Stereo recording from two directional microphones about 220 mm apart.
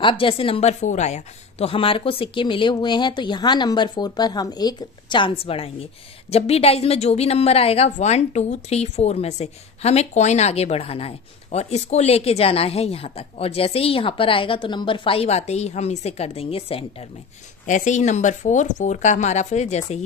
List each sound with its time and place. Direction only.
0.0 s a woman's voice: 25° left (ahead or behind)